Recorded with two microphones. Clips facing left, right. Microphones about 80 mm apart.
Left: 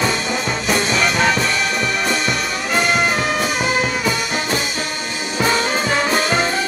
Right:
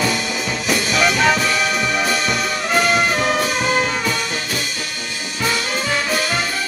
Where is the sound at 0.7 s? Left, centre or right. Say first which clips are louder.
Right 1 dB; centre.